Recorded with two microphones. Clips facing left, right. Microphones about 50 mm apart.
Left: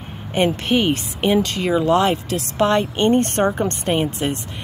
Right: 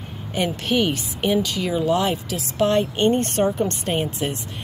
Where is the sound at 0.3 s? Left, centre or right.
Left.